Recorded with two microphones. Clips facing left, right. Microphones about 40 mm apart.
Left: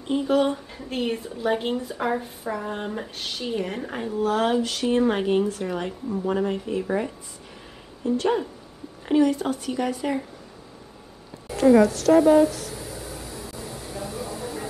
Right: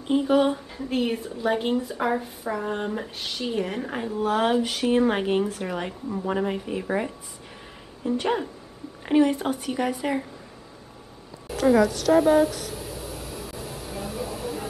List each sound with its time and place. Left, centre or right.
0.0 s a woman's voice: centre